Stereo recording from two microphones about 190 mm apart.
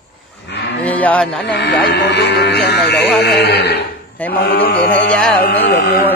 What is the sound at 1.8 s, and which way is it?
Speech, 65° left (ahead or behind).